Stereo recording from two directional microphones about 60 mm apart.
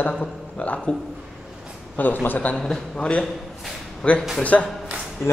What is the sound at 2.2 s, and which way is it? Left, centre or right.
Speech, left.